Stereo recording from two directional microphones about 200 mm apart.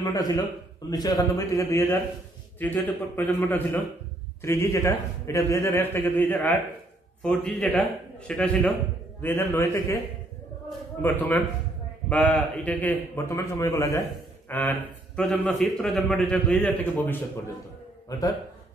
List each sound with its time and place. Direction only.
0.0 s a man's voice: 20° left (ahead or behind)
11.0 s speech: 10° left (ahead or behind)